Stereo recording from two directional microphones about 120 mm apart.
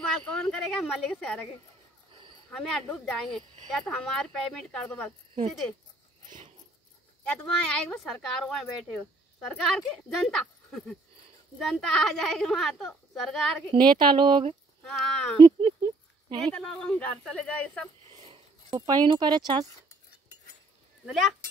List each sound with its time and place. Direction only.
0.1 s speech: 5° left (ahead or behind)
2.5 s speech: 5° left (ahead or behind)
7.4 s speech: 5° left (ahead or behind)
13.9 s speech: 40° right (ahead or behind)
14.9 s speech: 5° left (ahead or behind)
15.4 s a sound: 45° right (ahead or behind)
16.3 s speech: 5° left (ahead or behind)
18.1 s a sound: 45° right (ahead or behind)
19.0 s speech: 40° right (ahead or behind)